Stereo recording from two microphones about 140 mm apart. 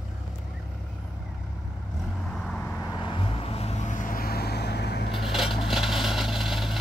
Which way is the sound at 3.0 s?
40° left (ahead or behind).